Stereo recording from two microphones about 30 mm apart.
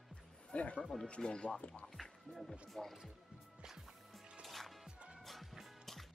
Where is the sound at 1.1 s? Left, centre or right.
Left.